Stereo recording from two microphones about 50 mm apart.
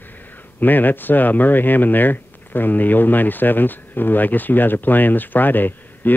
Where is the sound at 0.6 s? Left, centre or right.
Left.